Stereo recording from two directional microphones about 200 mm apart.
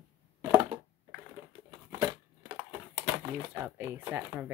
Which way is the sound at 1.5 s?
30° right (ahead or behind).